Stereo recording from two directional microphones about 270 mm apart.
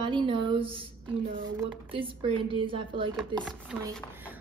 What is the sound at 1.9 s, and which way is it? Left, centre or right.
A woman's voice, centre.